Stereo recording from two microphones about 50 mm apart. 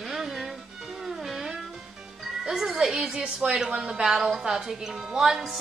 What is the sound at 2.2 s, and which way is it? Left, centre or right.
A woman's voice, centre.